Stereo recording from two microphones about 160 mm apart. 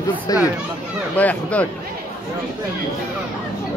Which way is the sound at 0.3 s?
25° left (ahead or behind).